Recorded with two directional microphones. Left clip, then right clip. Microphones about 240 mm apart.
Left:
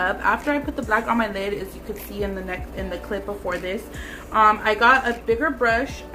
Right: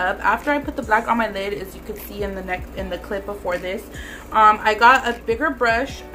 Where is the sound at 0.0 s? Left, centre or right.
Centre.